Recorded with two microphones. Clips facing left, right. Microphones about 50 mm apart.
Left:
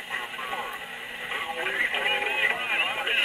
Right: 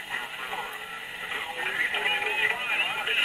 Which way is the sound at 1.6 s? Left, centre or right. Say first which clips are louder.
Left 1 dB; centre.